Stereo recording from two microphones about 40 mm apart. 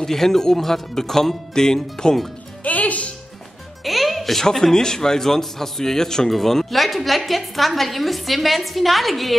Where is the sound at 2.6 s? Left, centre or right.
Left.